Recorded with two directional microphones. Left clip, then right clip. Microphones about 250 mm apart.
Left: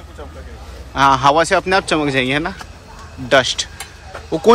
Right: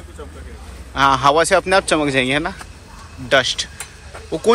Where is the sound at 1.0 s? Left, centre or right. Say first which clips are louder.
Left 2 dB; centre.